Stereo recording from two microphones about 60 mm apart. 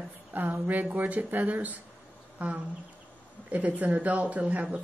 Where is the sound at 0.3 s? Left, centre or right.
Right.